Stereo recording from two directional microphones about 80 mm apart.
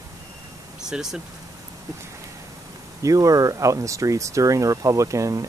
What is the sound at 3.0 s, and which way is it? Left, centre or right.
Speech, right.